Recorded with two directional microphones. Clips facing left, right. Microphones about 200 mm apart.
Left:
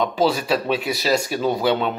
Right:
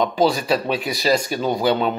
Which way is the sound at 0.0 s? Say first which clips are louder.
Right 1 dB; 5° left (ahead or behind).